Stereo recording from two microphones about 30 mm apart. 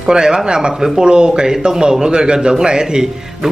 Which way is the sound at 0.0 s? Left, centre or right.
Right.